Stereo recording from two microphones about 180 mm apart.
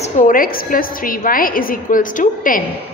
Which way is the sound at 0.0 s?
45° left (ahead or behind).